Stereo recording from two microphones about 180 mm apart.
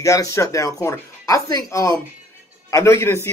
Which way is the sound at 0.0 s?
15° left (ahead or behind).